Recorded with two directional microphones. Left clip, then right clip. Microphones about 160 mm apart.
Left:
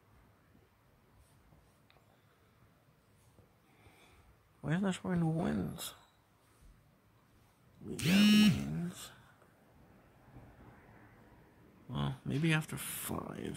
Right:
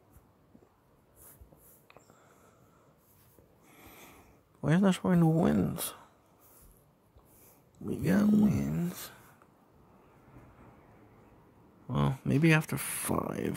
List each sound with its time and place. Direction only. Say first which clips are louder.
4.6 s speech: right 8 dB; 50° right (ahead or behind)
8.1 s a sound: even; 45° right (ahead or behind)
11.9 s speech: right 8 dB; 45° right (ahead or behind)